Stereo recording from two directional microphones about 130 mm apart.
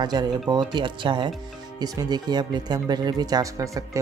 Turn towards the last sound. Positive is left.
turn(degrees=-25)  # may be behind; listen again after turning